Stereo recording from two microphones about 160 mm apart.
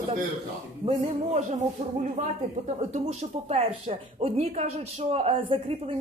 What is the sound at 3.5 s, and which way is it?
A woman's voice, 40° right (ahead or behind).